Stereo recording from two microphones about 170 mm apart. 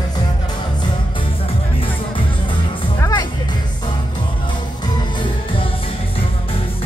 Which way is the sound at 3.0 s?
20° left (ahead or behind).